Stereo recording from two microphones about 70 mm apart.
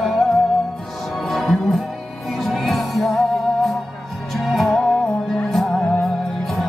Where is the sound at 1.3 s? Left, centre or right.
Centre.